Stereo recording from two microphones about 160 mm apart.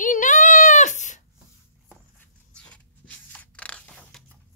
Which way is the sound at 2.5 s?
10° left (ahead or behind).